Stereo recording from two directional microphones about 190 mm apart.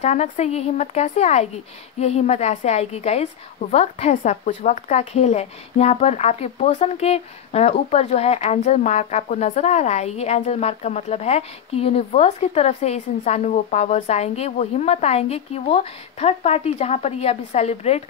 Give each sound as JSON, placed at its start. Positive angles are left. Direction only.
{"t": 0.0, "sound": "a woman's voice", "side_deg": 35}